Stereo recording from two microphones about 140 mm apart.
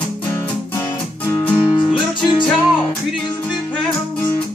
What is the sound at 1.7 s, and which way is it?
Music, 35° left (ahead or behind).